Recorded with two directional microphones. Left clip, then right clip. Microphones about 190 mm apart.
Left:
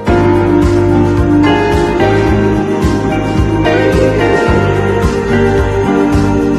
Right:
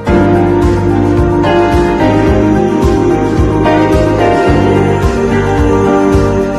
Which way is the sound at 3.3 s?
Centre (ahead or behind).